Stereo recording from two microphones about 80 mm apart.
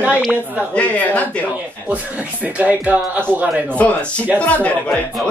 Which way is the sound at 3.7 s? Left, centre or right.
Centre.